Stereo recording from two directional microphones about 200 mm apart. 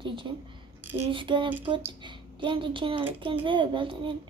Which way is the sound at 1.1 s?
25° right (ahead or behind).